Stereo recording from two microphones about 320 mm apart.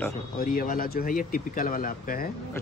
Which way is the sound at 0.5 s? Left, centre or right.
Left.